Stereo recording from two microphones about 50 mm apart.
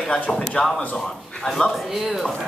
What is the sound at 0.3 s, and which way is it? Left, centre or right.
A woman's voice, centre.